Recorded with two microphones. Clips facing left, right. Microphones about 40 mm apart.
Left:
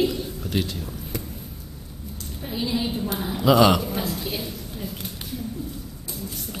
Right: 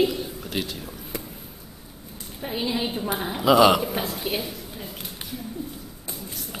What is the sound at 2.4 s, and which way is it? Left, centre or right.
A woman's voice, right.